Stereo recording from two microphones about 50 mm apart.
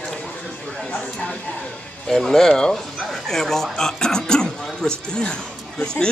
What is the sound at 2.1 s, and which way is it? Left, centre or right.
Speech, centre.